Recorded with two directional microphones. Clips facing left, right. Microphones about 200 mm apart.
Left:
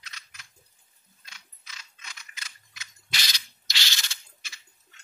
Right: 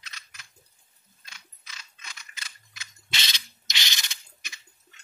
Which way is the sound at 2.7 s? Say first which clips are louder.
Right 1 dB; 25° right (ahead or behind).